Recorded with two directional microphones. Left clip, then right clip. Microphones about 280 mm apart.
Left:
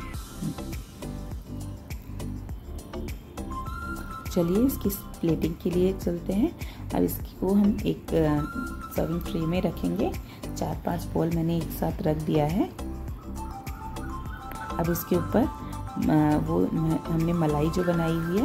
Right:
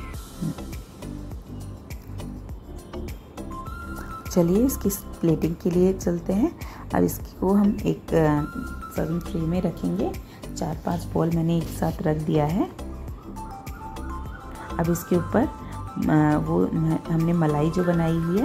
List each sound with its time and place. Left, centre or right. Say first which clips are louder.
0.4 s music: right 2 dB; centre
3.9 s music: right 5 dB; centre
5.2 s a woman's voice: right 3 dB; centre
14.6 s music: right 2 dB; centre
15.0 s speech: right 2 dB; centre